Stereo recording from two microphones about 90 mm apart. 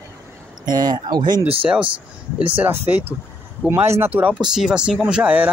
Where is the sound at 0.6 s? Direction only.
50° right (ahead or behind).